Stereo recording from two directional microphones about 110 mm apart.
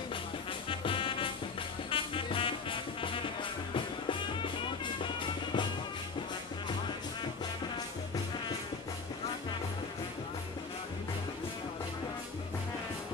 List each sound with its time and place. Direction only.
0.7 s music: 50° left (ahead or behind)